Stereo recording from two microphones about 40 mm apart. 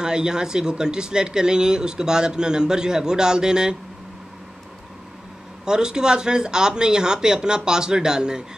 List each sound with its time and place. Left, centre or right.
0.0 s speech: centre
5.7 s speech: centre